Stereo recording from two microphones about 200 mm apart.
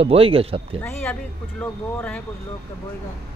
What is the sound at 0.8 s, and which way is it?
Speech, 10° left (ahead or behind).